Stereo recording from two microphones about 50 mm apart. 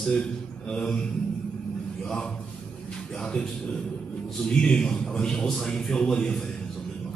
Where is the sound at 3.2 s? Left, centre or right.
Centre.